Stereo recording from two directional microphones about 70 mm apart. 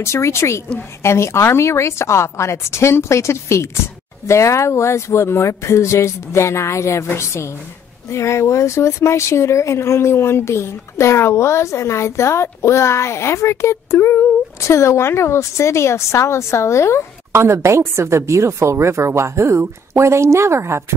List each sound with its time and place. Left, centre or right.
0.0 s speech: left
8.1 s speech: left
17.3 s a woman's voice: right